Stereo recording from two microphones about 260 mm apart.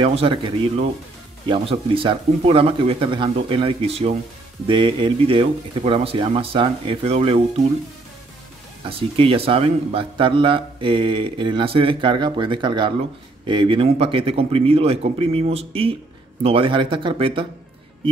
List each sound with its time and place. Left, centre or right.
0.0 s speech: right
8.8 s speech: right